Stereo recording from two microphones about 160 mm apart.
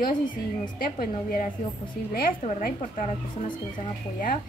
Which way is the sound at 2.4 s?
40° left (ahead or behind).